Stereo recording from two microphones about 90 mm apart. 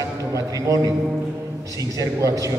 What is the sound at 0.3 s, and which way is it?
A man's voice, 40° right (ahead or behind).